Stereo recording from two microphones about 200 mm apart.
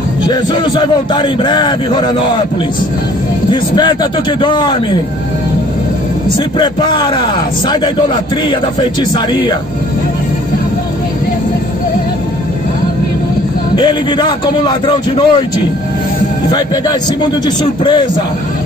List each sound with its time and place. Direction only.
0.3 s a man's voice: 20° left (ahead or behind)
3.4 s a man's voice: 20° left (ahead or behind)
6.6 s a man's voice: 20° left (ahead or behind)
9.1 s a man's voice: 20° left (ahead or behind)
13.7 s a man's voice: 20° left (ahead or behind)